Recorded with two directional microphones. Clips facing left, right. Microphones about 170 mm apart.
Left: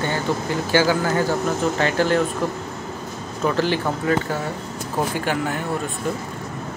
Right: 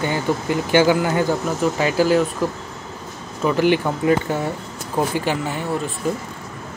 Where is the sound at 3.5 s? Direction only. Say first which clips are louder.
Right 4 dB; 15° right (ahead or behind).